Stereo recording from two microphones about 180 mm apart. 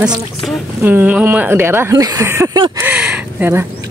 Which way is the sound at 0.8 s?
10° right (ahead or behind).